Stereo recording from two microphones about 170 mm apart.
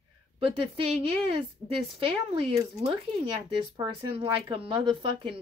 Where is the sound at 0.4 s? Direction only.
30° right (ahead or behind).